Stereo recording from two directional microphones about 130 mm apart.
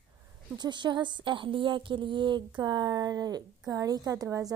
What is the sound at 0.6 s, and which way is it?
A woman's voice, 35° right (ahead or behind).